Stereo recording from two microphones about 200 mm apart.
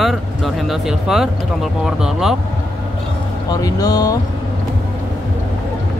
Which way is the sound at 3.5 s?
20° left (ahead or behind).